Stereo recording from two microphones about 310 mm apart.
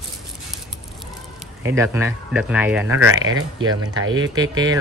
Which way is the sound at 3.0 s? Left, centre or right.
Right.